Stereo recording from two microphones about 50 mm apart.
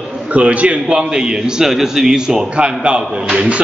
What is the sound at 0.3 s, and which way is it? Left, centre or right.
A man's voice, right.